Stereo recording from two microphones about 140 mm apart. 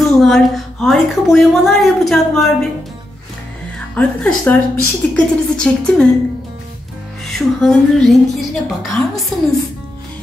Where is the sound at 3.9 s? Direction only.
10° left (ahead or behind).